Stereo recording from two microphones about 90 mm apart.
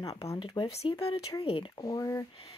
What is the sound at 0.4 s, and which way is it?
Speech, 75° left (ahead or behind).